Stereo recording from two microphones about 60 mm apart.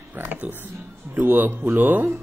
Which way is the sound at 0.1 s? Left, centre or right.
Right.